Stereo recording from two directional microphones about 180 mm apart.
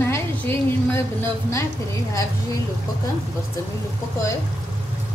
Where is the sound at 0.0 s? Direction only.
15° left (ahead or behind).